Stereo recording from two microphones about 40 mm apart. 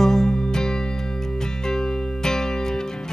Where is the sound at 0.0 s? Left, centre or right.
Centre.